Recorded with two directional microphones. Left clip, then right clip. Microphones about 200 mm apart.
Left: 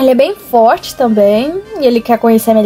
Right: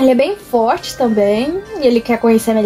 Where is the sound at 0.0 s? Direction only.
20° left (ahead or behind).